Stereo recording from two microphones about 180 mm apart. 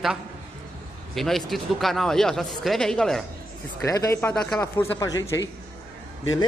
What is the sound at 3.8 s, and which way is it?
A man's voice, 15° left (ahead or behind).